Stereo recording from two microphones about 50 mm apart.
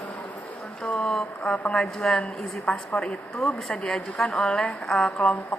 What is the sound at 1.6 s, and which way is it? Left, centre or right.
A woman's voice, centre.